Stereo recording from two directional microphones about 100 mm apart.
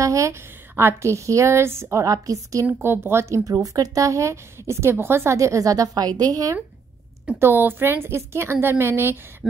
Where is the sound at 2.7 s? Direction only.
20° right (ahead or behind).